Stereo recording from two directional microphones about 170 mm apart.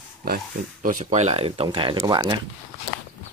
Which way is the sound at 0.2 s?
65° right (ahead or behind).